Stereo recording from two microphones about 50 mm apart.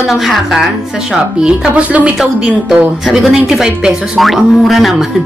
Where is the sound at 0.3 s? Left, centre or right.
Centre.